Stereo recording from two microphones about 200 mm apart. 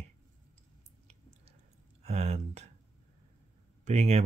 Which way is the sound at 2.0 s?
30° right (ahead or behind).